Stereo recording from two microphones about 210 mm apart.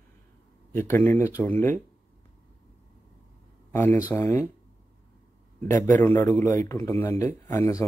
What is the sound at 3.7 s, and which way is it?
Speech, 10° left (ahead or behind).